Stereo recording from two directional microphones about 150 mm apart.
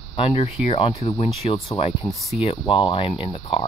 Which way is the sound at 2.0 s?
Centre (ahead or behind).